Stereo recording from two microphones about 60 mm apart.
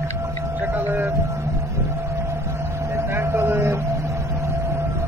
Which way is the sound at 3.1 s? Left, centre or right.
Right.